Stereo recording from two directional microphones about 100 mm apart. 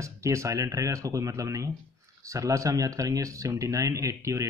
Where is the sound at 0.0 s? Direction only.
30° right (ahead or behind).